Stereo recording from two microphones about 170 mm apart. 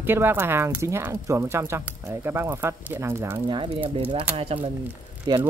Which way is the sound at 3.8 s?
30° right (ahead or behind).